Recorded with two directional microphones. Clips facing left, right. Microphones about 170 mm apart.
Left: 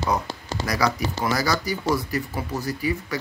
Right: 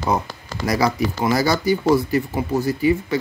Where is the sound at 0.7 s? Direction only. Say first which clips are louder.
Right 5 dB; 25° right (ahead or behind).